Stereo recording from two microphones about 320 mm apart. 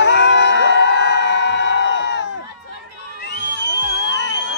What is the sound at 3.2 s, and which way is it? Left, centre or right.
Music, left.